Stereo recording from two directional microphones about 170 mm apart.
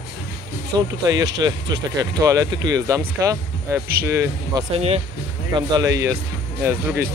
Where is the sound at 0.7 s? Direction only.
25° right (ahead or behind).